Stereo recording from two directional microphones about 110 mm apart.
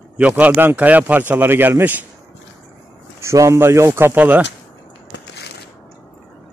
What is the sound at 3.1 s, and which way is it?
Speech, 25° right (ahead or behind).